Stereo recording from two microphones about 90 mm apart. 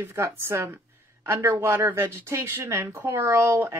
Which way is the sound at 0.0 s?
30° right (ahead or behind).